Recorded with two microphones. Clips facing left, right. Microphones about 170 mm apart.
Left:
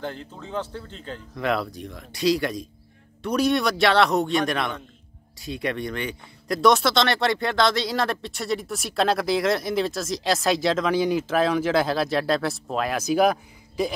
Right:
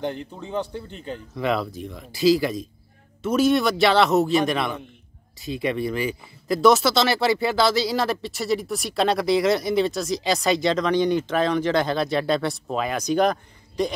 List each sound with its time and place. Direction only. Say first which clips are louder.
0.0 s speech: right 4 dB; 15° right (ahead or behind)
1.3 s speech: right 1 dB; centre (ahead or behind)